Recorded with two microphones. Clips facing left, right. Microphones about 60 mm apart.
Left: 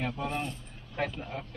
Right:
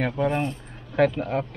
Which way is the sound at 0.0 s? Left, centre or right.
Right.